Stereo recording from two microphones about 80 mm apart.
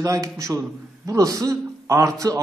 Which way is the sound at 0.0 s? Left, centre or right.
Right.